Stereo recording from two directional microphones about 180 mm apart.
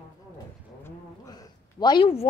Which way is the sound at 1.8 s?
25° left (ahead or behind).